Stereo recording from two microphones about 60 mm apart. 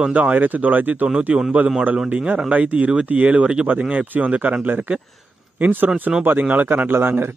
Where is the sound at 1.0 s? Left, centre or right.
Centre.